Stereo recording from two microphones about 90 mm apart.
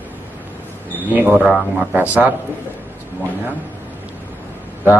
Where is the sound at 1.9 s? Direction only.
20° right (ahead or behind).